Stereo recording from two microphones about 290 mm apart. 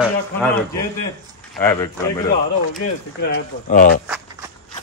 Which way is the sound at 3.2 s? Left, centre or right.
Left.